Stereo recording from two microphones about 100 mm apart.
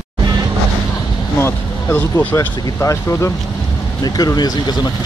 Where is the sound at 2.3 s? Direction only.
30° left (ahead or behind).